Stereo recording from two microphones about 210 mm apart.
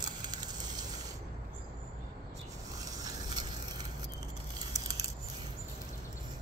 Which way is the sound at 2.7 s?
20° right (ahead or behind).